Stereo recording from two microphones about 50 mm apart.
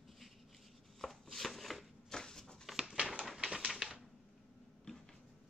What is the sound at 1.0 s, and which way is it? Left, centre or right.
Chopping, centre.